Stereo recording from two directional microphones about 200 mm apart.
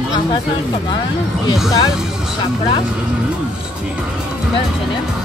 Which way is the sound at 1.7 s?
15° left (ahead or behind).